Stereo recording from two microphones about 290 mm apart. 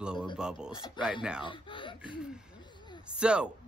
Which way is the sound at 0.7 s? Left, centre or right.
Centre.